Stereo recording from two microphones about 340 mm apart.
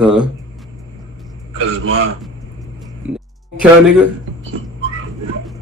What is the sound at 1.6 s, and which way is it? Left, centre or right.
Speech, right.